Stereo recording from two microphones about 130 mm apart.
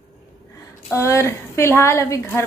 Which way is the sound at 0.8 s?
20° left (ahead or behind).